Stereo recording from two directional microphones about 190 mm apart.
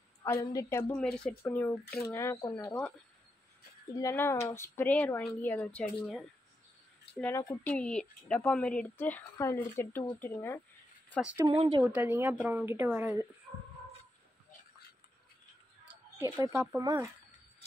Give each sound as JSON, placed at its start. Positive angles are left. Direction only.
{"t": 0.2, "sound": "a woman's voice", "side_deg": 15}
{"t": 4.0, "sound": "a woman's voice", "side_deg": 15}
{"t": 7.2, "sound": "a woman's voice", "side_deg": 15}
{"t": 11.1, "sound": "speech", "side_deg": -5}
{"t": 11.4, "sound": "speech", "side_deg": -25}
{"t": 11.8, "sound": "speech", "side_deg": -10}
{"t": 16.5, "sound": "speech", "side_deg": -15}